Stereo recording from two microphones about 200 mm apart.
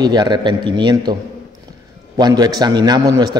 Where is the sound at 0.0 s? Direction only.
20° right (ahead or behind).